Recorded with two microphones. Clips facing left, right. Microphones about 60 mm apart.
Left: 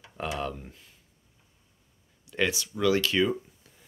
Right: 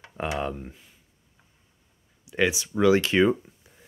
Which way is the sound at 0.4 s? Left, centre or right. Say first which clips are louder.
Right 3 dB; centre.